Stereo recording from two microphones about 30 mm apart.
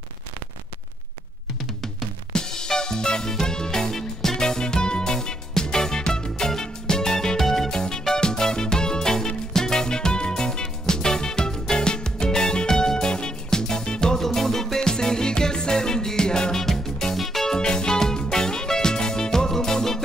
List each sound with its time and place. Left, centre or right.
2.3 s music: left
7.3 s music: centre
7.7 s music: centre
14.2 s music: centre
17.1 s music: centre
17.6 s music: left